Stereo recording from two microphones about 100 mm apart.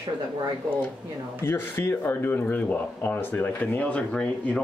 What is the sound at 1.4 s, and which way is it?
Speech, 25° left (ahead or behind).